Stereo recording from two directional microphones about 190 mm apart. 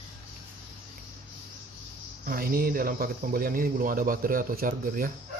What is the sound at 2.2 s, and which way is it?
Speech, 50° right (ahead or behind).